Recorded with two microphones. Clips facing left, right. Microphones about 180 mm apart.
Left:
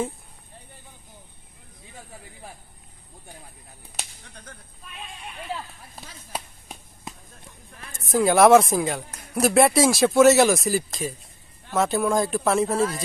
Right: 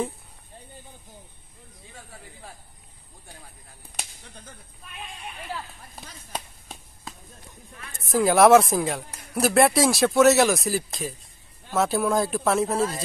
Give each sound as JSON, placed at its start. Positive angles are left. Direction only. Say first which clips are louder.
{"t": 5.9, "sound": "a sound", "louder": "left 1 dB", "side_deg": 5}
{"t": 7.1, "sound": "basketball bounce", "louder": "left 2 dB", "side_deg": 20}
{"t": 8.1, "sound": "speech", "louder": "left 1 dB", "side_deg": 0}